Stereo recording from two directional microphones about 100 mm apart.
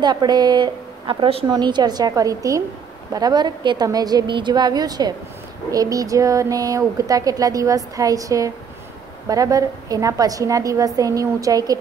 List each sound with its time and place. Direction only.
0.0 s a woman's voice: 45° right (ahead or behind)
1.5 s a woman's voice: 45° right (ahead or behind)